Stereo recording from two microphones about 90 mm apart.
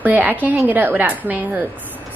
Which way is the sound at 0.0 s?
20° right (ahead or behind).